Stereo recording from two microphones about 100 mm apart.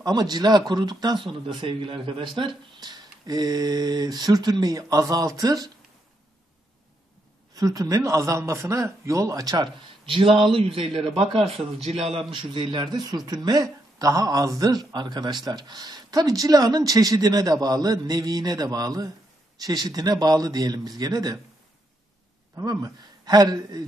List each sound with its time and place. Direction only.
0.0 s speech: 40° right (ahead or behind)
7.5 s speech: 35° right (ahead or behind)
10.0 s a man's voice: 60° right (ahead or behind); by 12.3 s 85° right
12.3 s a man's voice: 55° right (ahead or behind); by 21.4 s 40° right (ahead or behind)
22.7 s speech: 35° right (ahead or behind)